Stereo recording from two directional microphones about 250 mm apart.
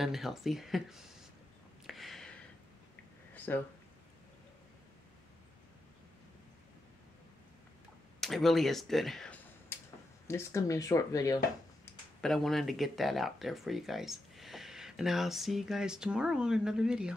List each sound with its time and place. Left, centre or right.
0.0 s speech: centre
1.9 s a sound: centre
8.2 s speech: centre
12.2 s speech: centre